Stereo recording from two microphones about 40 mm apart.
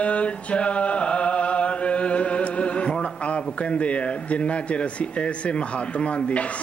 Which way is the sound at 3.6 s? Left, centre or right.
Left.